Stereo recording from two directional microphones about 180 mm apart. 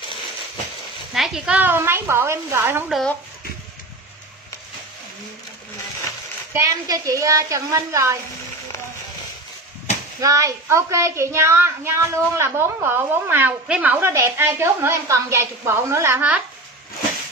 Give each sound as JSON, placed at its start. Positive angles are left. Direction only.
{"t": 1.1, "sound": "a woman's voice", "side_deg": 0}
{"t": 2.9, "sound": "speech", "side_deg": 0}
{"t": 6.5, "sound": "a woman's voice", "side_deg": -15}
{"t": 10.2, "sound": "a woman's voice", "side_deg": -20}